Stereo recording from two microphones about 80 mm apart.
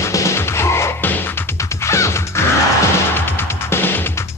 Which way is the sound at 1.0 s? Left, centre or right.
Left.